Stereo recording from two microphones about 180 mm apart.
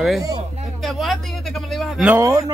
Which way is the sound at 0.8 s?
Centre (ahead or behind).